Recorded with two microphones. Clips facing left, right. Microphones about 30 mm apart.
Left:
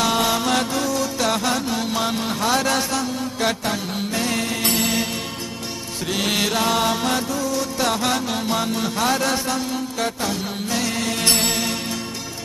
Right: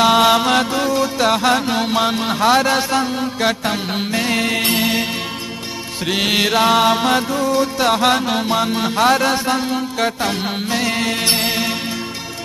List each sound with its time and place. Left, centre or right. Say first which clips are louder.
0.0 s music: right 7 dB; right
3.9 s music: right 4 dB; right
6.0 s music: right 5 dB; right